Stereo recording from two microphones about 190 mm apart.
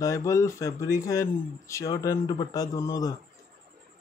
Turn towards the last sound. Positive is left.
turn(degrees=15)  # may be behind; listen again after turning